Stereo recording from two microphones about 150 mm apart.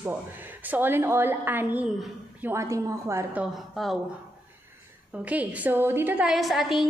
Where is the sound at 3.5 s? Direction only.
Centre (ahead or behind).